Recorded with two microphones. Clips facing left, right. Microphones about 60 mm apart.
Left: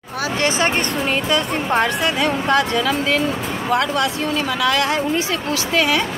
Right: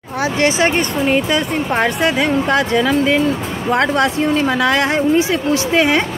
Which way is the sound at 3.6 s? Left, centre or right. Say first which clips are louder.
Right 4 dB; right.